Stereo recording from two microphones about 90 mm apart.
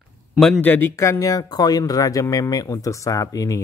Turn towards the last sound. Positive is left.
turn(degrees=40)  # may be behind; listen again after turning